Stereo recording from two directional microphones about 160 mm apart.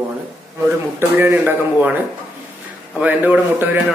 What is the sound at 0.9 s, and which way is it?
Speech, 15° right (ahead or behind).